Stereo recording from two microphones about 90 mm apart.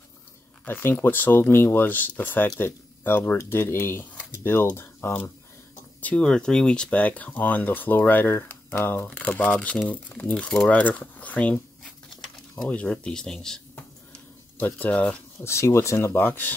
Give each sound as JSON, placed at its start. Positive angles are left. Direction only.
{"t": 0.7, "sound": "speech", "side_deg": 20}
{"t": 6.0, "sound": "speech", "side_deg": 10}
{"t": 9.0, "sound": "speech", "side_deg": 15}
{"t": 12.6, "sound": "speech", "side_deg": 15}
{"t": 14.6, "sound": "speech", "side_deg": 15}
{"t": 15.4, "sound": "speech", "side_deg": 30}